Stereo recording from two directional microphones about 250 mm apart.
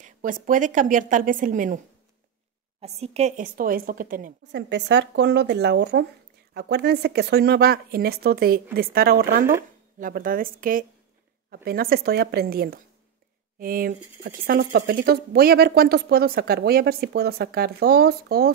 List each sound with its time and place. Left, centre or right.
0.0 s speech: right
2.8 s speech: right